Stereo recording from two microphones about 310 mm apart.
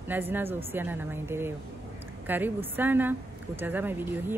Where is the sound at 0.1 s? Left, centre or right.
Centre.